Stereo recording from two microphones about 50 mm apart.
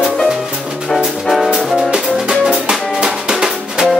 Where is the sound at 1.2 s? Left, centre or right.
Centre.